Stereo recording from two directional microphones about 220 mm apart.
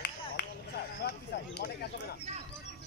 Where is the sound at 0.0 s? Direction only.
45° left (ahead or behind).